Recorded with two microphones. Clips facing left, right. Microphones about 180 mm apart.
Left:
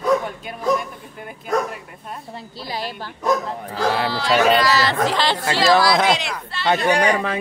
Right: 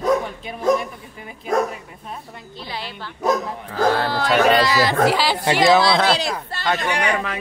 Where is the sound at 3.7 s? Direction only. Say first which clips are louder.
Right 2 dB; 50° right (ahead or behind).